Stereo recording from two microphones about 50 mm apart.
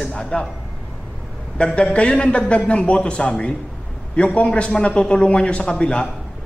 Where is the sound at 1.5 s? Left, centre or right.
Left.